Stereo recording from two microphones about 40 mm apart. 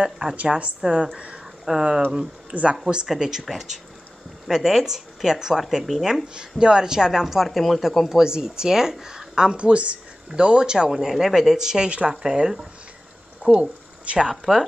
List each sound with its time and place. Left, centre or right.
0.0 s a woman's voice: centre
0.4 s a woman's voice: right
0.8 s speech: right
2.5 s a woman's voice: right
3.1 s a woman's voice: centre
6.2 s a woman's voice: right
7.4 s speech: centre
8.2 s a woman's voice: centre
10.9 s a woman's voice: centre
13.4 s a sound: right
14.2 s a woman's voice: centre